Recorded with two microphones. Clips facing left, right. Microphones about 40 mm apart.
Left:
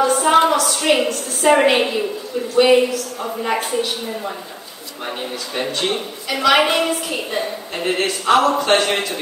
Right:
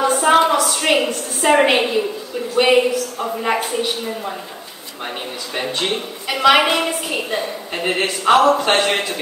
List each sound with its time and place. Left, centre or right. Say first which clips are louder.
0.0 s a sound: even; centre
1.0 s a woman's voice: left 1 dB; centre
2.6 s a woman's voice: left 1 dB; centre
5.0 s a woman's voice: left 1 dB; centre